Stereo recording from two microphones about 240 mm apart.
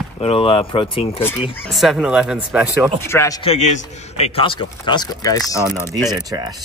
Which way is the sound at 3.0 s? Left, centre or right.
Centre.